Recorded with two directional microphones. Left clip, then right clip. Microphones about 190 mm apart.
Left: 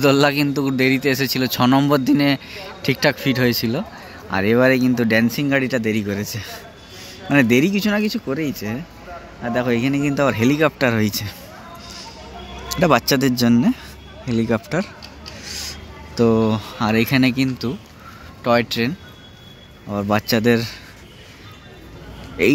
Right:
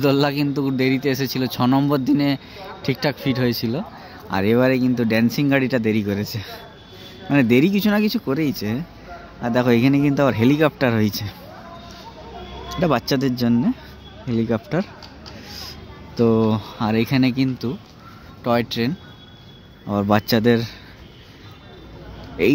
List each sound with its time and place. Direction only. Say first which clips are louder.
0.0 s speech: left 3 dB; 5° right (ahead or behind)
12.6 s speech: left 4 dB; 5° right (ahead or behind)
16.2 s speech: left 1 dB; 10° right (ahead or behind)
19.9 s speech: right 1 dB; 20° right (ahead or behind)
22.4 s speech: left 1 dB; 10° right (ahead or behind)